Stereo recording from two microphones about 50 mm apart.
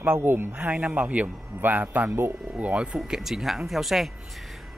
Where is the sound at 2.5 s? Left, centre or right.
Right.